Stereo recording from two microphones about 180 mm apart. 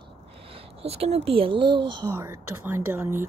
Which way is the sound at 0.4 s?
30° right (ahead or behind).